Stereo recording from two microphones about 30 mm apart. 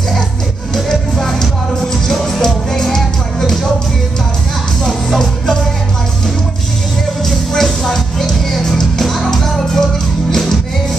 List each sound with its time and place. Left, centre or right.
0.7 s music: centre
4.8 s music: centre
7.2 s music: centre
8.6 s music: centre